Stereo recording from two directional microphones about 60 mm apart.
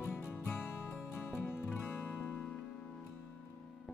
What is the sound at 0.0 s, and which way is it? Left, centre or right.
Music, left.